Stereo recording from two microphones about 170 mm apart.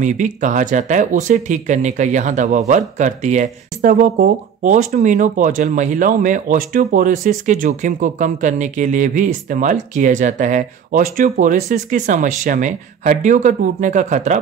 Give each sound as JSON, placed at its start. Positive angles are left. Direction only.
{"t": 0.0, "sound": "speech", "side_deg": -45}